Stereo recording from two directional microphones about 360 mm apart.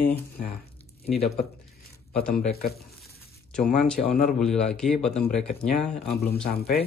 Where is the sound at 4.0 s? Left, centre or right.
Left.